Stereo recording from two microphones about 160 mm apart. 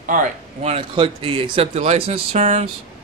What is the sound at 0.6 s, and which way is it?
Speech, 35° right (ahead or behind).